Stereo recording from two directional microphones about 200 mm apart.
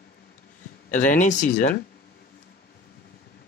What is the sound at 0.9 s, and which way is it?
Speech, 40° left (ahead or behind).